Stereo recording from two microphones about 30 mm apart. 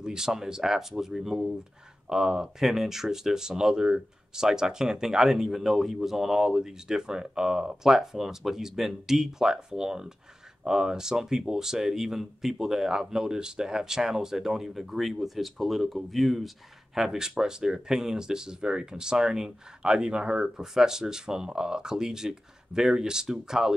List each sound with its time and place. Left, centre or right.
0.0 s speech: centre
16.9 s speech: centre; by 20.4 s right
20.4 s speech: centre